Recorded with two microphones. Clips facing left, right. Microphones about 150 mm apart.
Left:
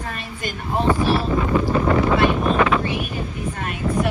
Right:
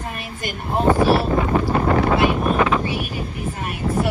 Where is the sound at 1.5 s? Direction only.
45° right (ahead or behind).